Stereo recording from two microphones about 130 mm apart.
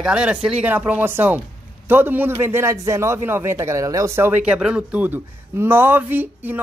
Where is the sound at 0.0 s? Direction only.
5° right (ahead or behind).